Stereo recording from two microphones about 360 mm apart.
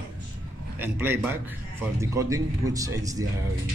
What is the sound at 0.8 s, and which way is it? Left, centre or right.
Speech, centre.